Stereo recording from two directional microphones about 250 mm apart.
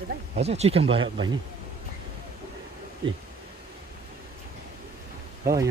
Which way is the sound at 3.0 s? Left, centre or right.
Centre.